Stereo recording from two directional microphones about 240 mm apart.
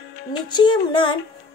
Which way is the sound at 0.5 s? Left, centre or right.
Centre.